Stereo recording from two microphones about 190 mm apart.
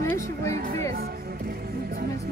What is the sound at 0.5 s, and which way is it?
Music, 35° right (ahead or behind).